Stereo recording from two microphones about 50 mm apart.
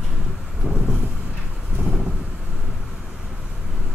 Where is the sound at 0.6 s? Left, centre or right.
Right.